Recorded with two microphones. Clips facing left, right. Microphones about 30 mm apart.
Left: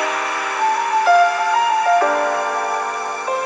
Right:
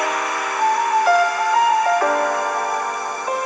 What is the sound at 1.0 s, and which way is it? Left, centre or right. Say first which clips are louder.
Music: left 2 dB; left.